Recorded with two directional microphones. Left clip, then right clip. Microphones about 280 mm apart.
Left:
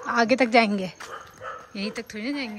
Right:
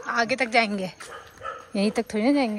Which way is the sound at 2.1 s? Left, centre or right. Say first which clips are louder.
Right 11 dB; centre.